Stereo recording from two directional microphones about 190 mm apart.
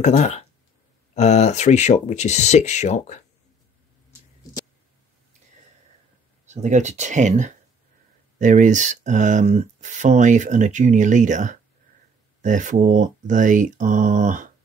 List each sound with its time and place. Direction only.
0.0 s speech: 35° left (ahead or behind)
6.4 s speech: 40° right (ahead or behind)